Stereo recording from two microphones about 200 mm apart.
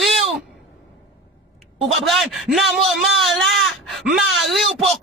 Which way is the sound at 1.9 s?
Centre (ahead or behind).